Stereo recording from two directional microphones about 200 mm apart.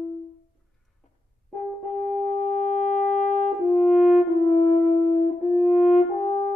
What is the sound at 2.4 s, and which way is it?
Music, 35° left (ahead or behind).